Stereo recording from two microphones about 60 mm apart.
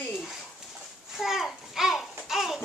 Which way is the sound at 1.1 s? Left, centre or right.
Centre.